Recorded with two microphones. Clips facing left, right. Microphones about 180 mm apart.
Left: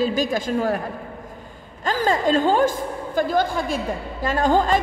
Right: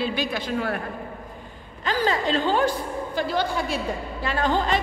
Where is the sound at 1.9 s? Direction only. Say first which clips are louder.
Left 3 dB; 45° left (ahead or behind).